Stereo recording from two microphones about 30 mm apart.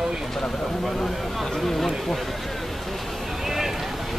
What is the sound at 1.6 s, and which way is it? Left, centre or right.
Speech, centre.